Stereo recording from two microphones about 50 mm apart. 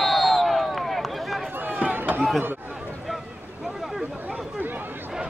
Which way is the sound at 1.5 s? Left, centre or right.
Right.